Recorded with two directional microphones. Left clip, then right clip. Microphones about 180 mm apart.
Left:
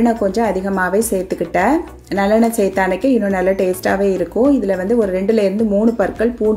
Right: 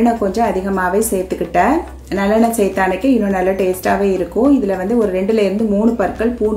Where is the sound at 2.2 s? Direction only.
45° left (ahead or behind).